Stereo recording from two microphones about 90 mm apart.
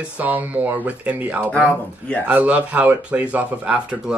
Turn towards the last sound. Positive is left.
turn(degrees=-10)  # may be behind; listen again after turning